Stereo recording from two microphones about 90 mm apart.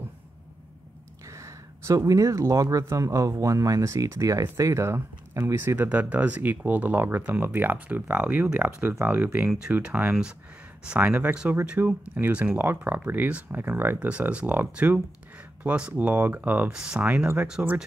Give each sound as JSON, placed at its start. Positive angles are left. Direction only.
{"t": 1.2, "sound": "speech", "side_deg": -35}
{"t": 5.8, "sound": "speech", "side_deg": -15}
{"t": 17.0, "sound": "speech", "side_deg": -20}